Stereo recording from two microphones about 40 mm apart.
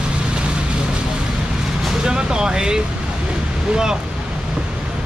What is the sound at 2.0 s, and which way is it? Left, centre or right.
Speech, centre.